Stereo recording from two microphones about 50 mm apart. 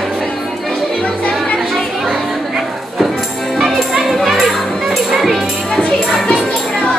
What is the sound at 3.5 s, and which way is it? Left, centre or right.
Music, centre.